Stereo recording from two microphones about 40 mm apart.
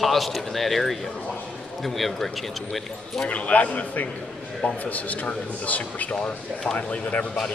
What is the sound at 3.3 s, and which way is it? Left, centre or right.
Speech, left.